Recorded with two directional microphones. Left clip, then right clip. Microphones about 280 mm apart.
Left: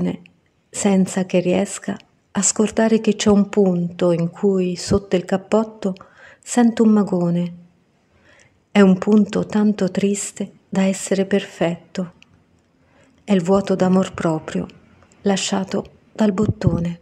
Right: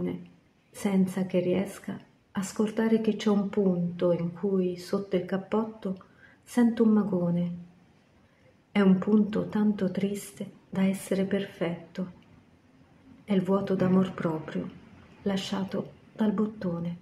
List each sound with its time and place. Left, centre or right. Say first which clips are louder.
0.7 s speech: left 10 dB; left
8.7 s speech: left 10 dB; left
13.2 s speech: left 10 dB; left